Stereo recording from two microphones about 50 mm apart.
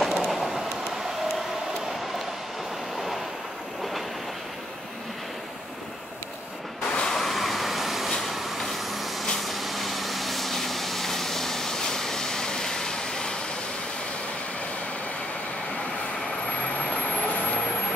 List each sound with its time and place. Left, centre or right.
0.0 s train: centre
6.9 s a sound: centre
7.2 s vehicle: centre